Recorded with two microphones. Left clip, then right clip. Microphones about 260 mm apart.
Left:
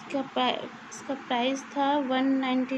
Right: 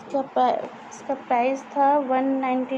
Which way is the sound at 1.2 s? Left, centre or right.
Left.